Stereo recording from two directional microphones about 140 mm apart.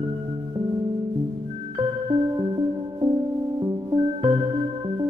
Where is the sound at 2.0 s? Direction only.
35° right (ahead or behind).